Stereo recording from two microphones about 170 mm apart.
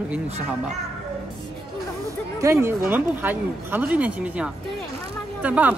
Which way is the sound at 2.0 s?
15° right (ahead or behind).